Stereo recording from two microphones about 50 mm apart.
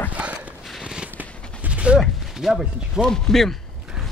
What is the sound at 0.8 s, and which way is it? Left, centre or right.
Fireworks, centre.